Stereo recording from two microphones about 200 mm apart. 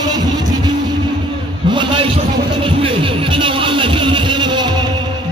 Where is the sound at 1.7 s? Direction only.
25° right (ahead or behind).